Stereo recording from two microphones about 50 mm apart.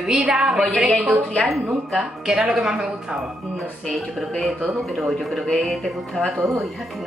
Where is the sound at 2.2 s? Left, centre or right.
Centre.